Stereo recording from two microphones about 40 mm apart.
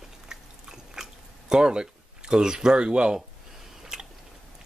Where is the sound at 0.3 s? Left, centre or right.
Centre.